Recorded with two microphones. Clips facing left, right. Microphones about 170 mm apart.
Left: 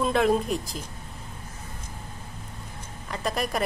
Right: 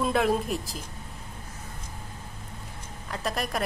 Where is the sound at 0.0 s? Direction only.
Centre (ahead or behind).